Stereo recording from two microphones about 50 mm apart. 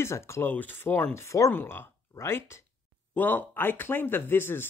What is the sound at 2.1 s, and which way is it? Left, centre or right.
Speech, left.